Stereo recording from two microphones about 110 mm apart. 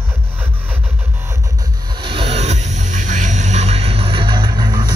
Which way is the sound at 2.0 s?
50° right (ahead or behind).